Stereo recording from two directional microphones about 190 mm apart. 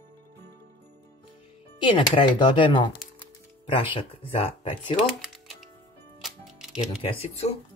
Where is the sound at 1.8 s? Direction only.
25° left (ahead or behind).